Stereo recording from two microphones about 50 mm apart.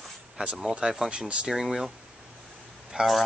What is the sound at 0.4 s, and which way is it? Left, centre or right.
Speech, centre.